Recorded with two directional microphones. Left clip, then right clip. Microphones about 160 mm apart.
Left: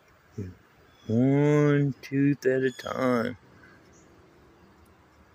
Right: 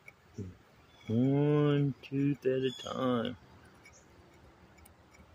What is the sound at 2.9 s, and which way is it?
Speech, 25° left (ahead or behind).